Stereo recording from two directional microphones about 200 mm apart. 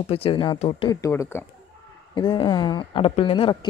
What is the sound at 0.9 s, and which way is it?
Speech, 15° left (ahead or behind).